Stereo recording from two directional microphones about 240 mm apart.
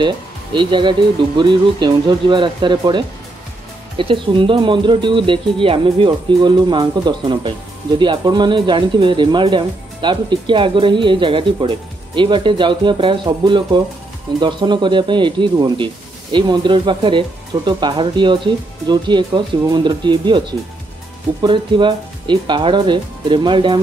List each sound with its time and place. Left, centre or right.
0.6 s speech: centre